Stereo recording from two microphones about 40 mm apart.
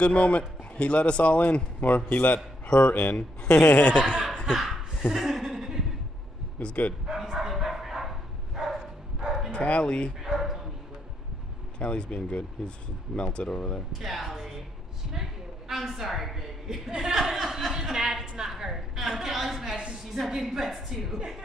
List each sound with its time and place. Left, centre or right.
0.0 s speech: left
2.6 s a sound: left
2.9 s speech: left
3.4 s speech: left
3.9 s speech: right
4.5 s speech: centre
5.0 s chuckle: centre
7.3 s bow-wow: centre
9.5 s speech: left
10.2 s dog: centre
11.8 s speech: left
13.9 s a woman's voice: centre
15.8 s a woman's voice: centre